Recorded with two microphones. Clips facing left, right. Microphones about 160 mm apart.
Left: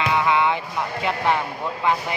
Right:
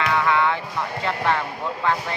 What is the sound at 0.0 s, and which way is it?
Music, 15° left (ahead or behind).